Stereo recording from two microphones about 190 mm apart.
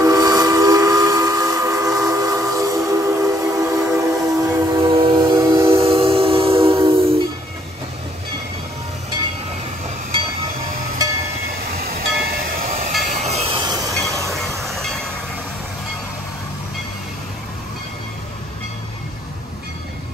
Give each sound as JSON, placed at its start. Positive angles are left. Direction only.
{"t": 0.0, "sound": "train", "side_deg": -20}
{"t": 4.8, "sound": "train", "side_deg": -25}
{"t": 6.9, "sound": "music", "side_deg": -30}
{"t": 11.6, "sound": "train", "side_deg": -55}
{"t": 14.6, "sound": "train", "side_deg": 0}